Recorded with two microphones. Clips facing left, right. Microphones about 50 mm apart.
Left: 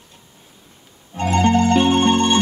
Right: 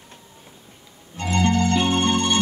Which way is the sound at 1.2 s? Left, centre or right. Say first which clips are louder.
Left 5 dB; left.